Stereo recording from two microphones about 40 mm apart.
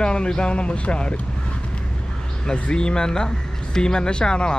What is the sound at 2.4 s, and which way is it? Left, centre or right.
Speech, left.